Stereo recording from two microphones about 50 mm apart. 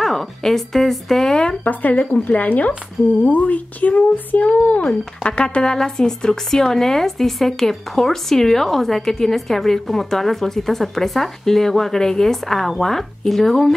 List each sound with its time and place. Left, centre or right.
0.0 s speech: centre
1.6 s speech: left; by 13.7 s centre